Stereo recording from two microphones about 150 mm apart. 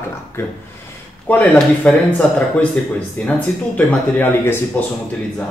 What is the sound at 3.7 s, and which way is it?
Speech, 10° left (ahead or behind).